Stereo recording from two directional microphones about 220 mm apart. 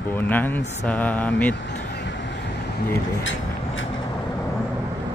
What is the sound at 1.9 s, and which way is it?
Vehicle, 55° left (ahead or behind).